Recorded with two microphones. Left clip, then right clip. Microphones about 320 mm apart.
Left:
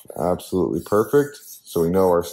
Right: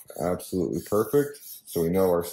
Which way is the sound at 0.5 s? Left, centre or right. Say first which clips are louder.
Left 6 dB; left.